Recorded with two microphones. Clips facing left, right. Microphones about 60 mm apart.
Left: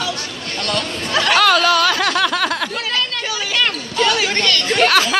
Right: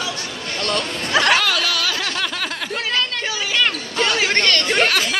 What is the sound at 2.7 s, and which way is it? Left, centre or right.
Chatter, right.